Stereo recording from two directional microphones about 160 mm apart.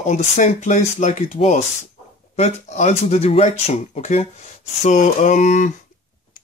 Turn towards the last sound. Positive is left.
turn(degrees=50)  # may be behind; listen again after turning